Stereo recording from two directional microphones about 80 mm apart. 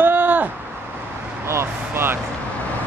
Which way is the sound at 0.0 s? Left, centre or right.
Right.